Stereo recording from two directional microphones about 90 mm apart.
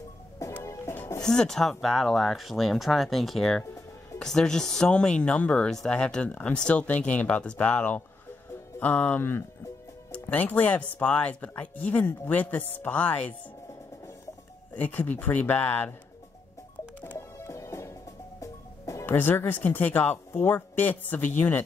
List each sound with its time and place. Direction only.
1.2 s speech: 5° left (ahead or behind)
14.7 s speech: 20° left (ahead or behind)
17.0 s music: 25° left (ahead or behind)
19.0 s speech: 25° left (ahead or behind)